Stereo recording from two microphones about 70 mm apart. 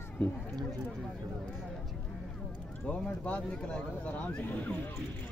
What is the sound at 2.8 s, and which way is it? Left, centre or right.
Speech, centre.